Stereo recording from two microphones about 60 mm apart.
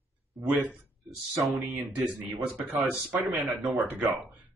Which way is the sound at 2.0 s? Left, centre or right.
Right.